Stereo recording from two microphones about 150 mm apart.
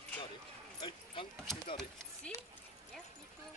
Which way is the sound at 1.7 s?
Centre (ahead or behind).